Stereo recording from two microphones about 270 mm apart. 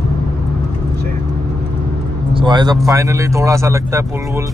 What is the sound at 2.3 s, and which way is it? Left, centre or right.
Speech, centre.